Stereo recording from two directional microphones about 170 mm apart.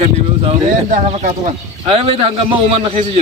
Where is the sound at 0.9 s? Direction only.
40° right (ahead or behind).